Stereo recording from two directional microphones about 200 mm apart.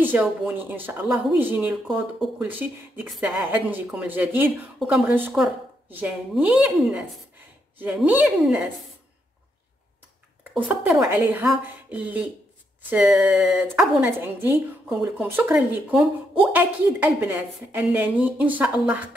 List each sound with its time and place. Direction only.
0.0 s speech: 10° right (ahead or behind)
10.5 s speech: 5° right (ahead or behind)